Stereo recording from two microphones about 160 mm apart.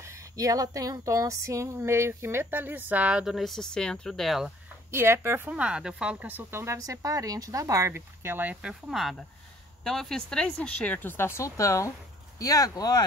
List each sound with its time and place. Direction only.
0.0 s speech: 20° right (ahead or behind); by 4.5 s centre (ahead or behind)
4.9 s speech: 15° right (ahead or behind); by 13.0 s 25° left (ahead or behind)